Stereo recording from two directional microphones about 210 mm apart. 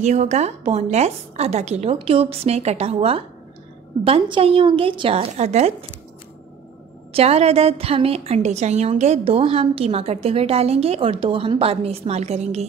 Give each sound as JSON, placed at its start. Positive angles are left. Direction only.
{"t": 0.0, "sound": "a woman's voice", "side_deg": -35}
{"t": 7.1, "sound": "a woman's voice", "side_deg": -30}